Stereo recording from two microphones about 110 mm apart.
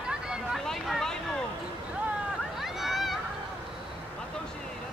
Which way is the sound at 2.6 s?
Centre (ahead or behind).